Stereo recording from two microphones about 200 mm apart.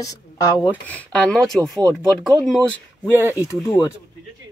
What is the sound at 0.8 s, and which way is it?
Speech, 5° left (ahead or behind).